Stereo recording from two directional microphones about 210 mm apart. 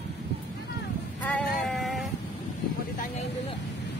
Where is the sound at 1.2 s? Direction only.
5° left (ahead or behind).